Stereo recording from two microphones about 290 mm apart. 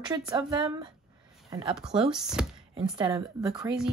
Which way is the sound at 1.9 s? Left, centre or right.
Centre.